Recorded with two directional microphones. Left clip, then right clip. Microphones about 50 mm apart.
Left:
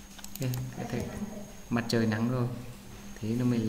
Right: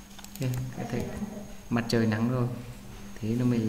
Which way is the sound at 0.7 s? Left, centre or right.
Centre.